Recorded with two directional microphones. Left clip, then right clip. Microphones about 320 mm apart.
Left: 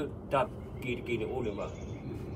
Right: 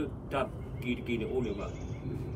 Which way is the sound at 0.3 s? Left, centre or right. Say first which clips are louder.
Left 5 dB; centre.